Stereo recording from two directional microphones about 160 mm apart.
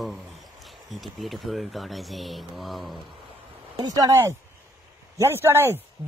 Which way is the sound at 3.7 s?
20° right (ahead or behind).